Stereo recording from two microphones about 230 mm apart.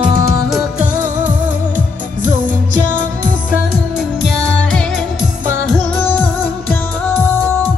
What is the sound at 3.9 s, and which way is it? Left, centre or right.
Music, centre.